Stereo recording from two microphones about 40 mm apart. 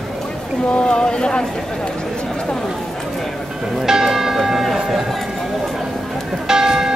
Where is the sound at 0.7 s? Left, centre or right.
Left.